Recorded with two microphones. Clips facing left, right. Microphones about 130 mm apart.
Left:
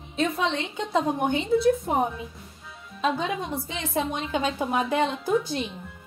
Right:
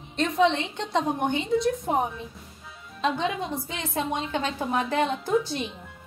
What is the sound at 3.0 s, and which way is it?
A woman's voice, centre (ahead or behind).